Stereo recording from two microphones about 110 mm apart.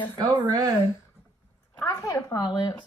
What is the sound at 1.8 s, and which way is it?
Speech, 30° left (ahead or behind).